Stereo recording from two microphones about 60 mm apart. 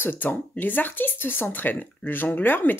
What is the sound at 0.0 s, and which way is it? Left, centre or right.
Speech, left.